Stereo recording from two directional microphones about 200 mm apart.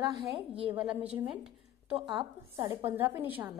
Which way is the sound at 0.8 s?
5° right (ahead or behind).